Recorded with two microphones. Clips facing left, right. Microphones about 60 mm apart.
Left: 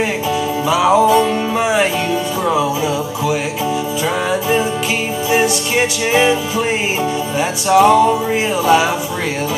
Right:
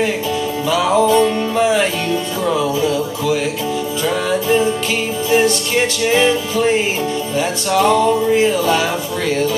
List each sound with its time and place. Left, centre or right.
0.7 s music: centre